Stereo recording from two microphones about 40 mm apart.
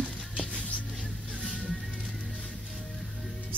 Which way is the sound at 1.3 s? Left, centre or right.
Right.